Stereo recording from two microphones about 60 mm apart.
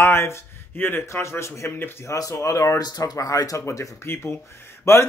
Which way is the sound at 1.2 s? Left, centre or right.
Left.